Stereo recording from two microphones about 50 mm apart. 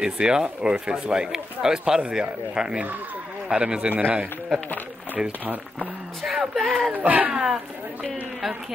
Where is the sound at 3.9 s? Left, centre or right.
Right.